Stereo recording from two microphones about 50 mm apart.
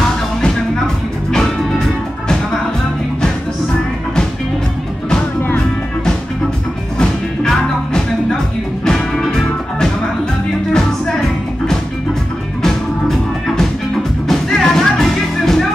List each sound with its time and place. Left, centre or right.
1.7 s music: centre
7.0 s music: centre